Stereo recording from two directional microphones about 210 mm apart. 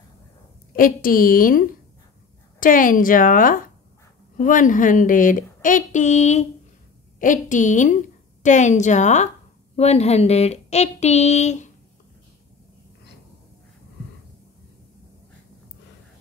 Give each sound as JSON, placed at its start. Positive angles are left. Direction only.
{"t": 0.7, "sound": "a woman's voice", "side_deg": 40}